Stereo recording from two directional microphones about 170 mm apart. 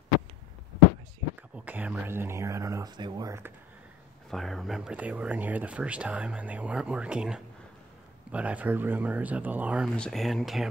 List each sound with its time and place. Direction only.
1.6 s speech: 10° right (ahead or behind)
4.3 s speech: centre (ahead or behind)
9.9 s speech: 5° left (ahead or behind)